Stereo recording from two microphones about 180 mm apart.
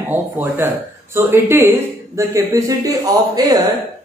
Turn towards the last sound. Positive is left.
turn(degrees=-20)  # may be behind; listen again after turning